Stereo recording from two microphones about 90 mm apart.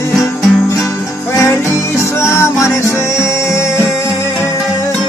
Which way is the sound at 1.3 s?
30° left (ahead or behind).